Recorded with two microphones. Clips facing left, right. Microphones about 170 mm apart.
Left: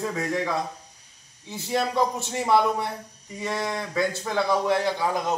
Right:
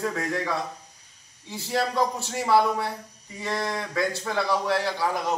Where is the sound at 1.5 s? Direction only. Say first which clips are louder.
Left 1 dB; 20° left (ahead or behind).